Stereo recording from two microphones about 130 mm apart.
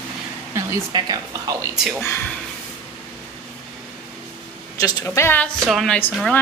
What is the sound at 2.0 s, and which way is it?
Speech, 15° left (ahead or behind).